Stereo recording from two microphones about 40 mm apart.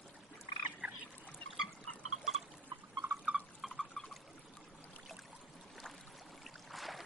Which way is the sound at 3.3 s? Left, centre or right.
Right.